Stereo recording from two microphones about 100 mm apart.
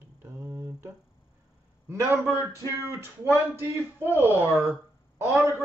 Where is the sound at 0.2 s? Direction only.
25° right (ahead or behind).